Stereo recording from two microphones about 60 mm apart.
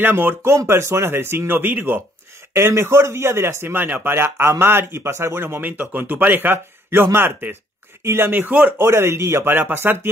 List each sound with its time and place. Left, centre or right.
0.0 s speech: right
0.7 s speech: right
2.5 s speech: right
5.6 s speech: right
6.9 s speech: right
8.0 s speech: right
8.8 s speech: right